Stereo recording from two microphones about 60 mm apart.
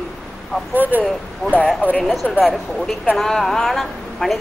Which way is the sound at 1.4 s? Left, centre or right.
Centre.